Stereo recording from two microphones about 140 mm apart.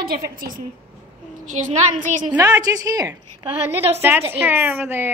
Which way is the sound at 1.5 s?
60° right (ahead or behind).